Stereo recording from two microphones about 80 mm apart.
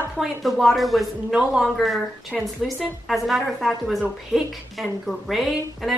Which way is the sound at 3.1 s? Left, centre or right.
Centre.